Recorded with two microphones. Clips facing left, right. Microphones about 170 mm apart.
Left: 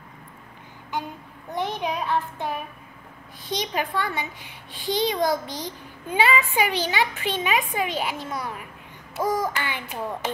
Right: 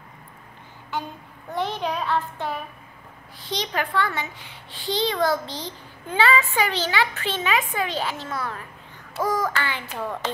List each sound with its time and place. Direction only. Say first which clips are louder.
1.5 s a child's voice: right 1 dB; 15° left (ahead or behind)